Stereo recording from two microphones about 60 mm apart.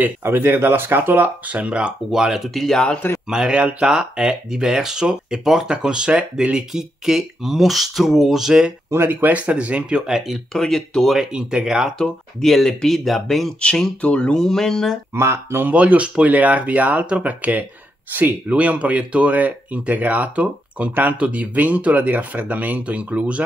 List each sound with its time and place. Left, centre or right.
0.0 s speech: right
1.6 s speech: centre
2.0 s speech: centre
3.3 s speech: centre
8.9 s speech: right; by 10.1 s centre
10.1 s speech: centre
10.5 s speech: centre
11.1 s speech: centre
12.0 s speech: centre
14.0 s speech: centre
14.4 s speech: centre
15.1 s speech: right
15.7 s speech: right